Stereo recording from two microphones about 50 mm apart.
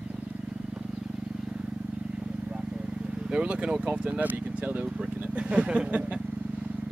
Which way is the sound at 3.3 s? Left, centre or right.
Right.